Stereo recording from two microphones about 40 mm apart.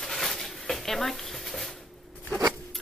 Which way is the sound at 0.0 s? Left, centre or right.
Centre.